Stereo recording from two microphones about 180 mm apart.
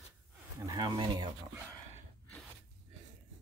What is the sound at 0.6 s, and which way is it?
Speech, 20° right (ahead or behind).